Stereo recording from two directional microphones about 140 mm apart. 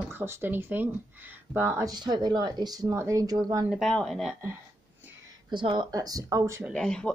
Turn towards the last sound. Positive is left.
turn(degrees=5)  # may be behind; listen again after turning